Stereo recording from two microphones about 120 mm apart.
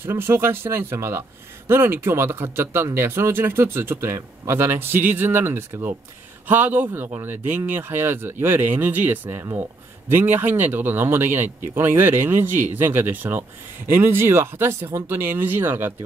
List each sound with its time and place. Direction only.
0.0 s speech: 20° right (ahead or behind)